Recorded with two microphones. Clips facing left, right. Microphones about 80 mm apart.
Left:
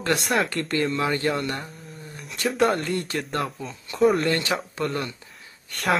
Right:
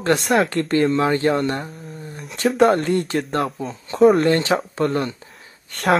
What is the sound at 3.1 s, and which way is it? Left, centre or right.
Speech, right.